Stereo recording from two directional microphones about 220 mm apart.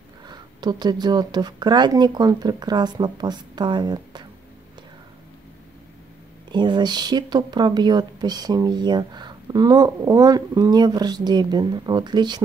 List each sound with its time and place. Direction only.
0.3 s speech: 20° right (ahead or behind)
6.5 s speech: 20° right (ahead or behind)